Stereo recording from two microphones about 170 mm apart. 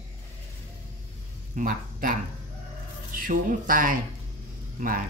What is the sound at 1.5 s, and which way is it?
Speech, 50° right (ahead or behind).